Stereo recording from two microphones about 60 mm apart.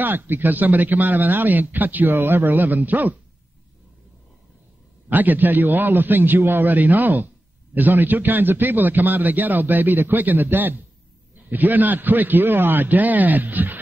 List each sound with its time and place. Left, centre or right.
0.0 s a man's voice: right
5.1 s a man's voice: right